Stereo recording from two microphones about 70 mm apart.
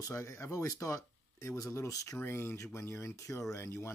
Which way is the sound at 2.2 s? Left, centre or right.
Left.